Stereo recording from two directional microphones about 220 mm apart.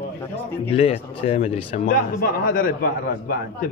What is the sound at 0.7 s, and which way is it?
A man's voice, 25° left (ahead or behind).